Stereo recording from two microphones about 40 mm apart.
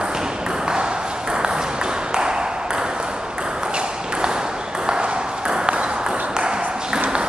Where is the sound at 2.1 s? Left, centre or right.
Centre.